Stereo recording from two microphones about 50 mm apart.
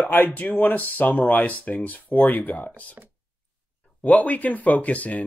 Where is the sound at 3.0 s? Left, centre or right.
Right.